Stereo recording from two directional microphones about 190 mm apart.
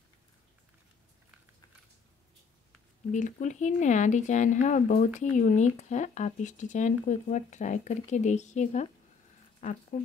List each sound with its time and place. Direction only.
3.1 s speech: 40° left (ahead or behind)